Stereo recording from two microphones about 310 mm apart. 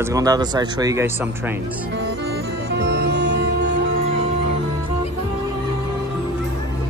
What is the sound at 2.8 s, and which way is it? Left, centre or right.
Music, right.